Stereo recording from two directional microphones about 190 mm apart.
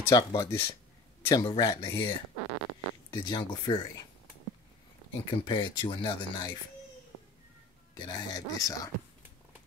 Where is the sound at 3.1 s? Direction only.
25° left (ahead or behind).